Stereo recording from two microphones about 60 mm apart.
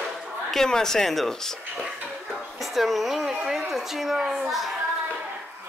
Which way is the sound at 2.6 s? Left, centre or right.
Centre.